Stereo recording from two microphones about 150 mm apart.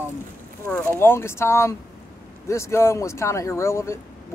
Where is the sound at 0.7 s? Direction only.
15° left (ahead or behind).